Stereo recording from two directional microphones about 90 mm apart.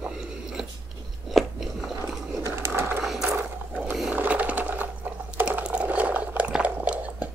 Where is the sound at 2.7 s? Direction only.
25° right (ahead or behind).